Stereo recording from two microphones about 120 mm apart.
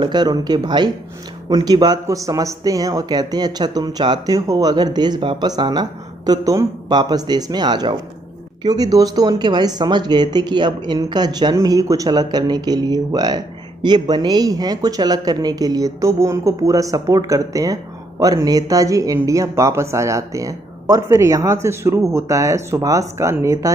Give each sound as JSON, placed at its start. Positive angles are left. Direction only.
{"t": 0.0, "sound": "speech", "side_deg": -35}